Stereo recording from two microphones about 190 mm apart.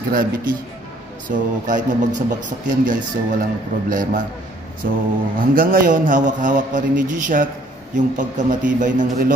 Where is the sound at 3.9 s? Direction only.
45° right (ahead or behind).